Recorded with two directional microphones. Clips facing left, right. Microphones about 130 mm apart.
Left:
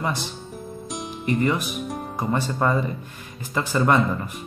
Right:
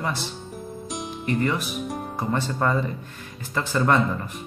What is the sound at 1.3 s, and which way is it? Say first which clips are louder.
Music: left 2 dB; 20° left (ahead or behind).